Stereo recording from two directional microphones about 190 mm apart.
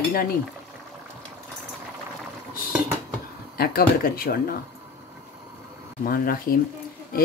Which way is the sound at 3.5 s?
50° left (ahead or behind).